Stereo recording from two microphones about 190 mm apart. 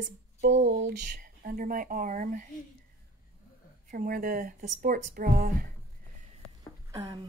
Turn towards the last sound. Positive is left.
turn(degrees=-20)  # may be behind; listen again after turning